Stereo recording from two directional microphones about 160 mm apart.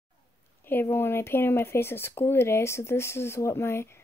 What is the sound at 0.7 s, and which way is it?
Speech, 15° left (ahead or behind).